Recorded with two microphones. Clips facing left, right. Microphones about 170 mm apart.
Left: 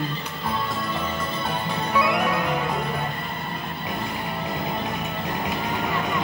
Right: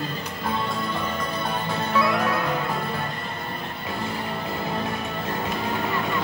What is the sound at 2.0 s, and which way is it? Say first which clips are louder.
Music: even; 15° left (ahead or behind).